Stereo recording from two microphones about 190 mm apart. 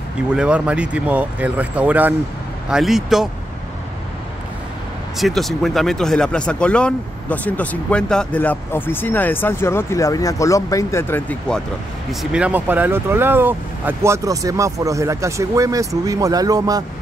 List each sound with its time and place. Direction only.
0.3 s speech: 5° right (ahead or behind)
5.2 s speech: centre (ahead or behind); by 16.8 s 20° right (ahead or behind)